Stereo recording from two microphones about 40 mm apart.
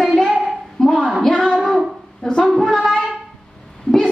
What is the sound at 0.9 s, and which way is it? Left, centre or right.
Speech, centre.